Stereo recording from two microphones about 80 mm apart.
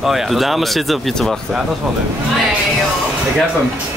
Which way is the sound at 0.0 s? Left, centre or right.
Centre.